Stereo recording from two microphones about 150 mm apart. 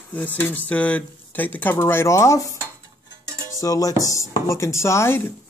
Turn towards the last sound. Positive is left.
turn(degrees=15)  # may be behind; listen again after turning